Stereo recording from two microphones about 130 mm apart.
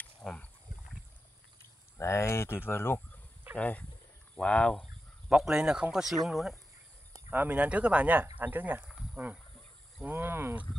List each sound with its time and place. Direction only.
0.2 s a sound: 5° left (ahead or behind)
2.0 s speech: 20° left (ahead or behind)
5.3 s speech: 5° right (ahead or behind)
7.2 s speech: 15° right (ahead or behind)
8.9 s cricket: 10° right (ahead or behind)
10.0 s speech: 15° right (ahead or behind)